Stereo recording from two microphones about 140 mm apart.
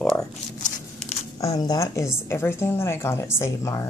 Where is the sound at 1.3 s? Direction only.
25° left (ahead or behind).